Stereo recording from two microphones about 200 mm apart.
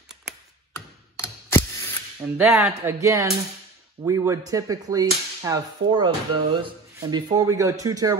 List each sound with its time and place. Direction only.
0.7 s tick-tock: 15° left (ahead or behind)
2.3 s whip: 10° right (ahead or behind)